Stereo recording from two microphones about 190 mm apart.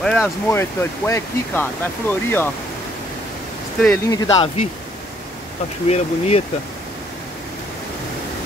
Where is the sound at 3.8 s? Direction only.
15° left (ahead or behind).